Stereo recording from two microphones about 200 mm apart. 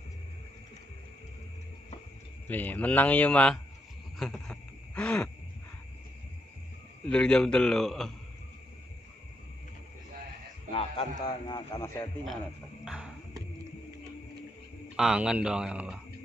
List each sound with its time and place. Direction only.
2.4 s speech: 10° left (ahead or behind)
4.2 s a sound: 5° left (ahead or behind)
7.1 s a man's voice: 5° left (ahead or behind)
10.7 s a man's voice: 25° left (ahead or behind)
12.8 s a man's voice: 5° right (ahead or behind)
15.0 s a man's voice: 5° right (ahead or behind)